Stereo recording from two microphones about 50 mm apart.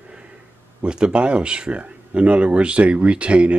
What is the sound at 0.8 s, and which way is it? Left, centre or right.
Speech, right.